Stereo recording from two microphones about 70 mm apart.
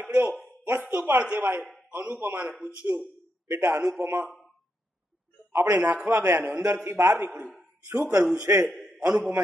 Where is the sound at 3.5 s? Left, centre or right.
Right.